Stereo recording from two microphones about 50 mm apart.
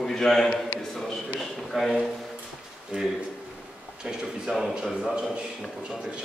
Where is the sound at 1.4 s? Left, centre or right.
Centre.